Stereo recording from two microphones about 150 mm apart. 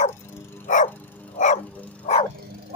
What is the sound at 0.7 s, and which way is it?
Dog, 60° left (ahead or behind).